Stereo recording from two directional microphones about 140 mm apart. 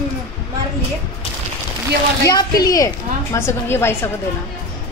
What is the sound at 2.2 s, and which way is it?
A woman's voice, 25° left (ahead or behind).